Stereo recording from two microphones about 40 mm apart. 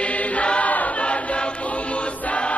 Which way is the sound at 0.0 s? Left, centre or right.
Left.